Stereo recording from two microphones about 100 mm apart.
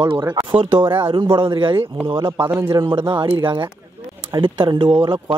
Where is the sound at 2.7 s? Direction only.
60° right (ahead or behind).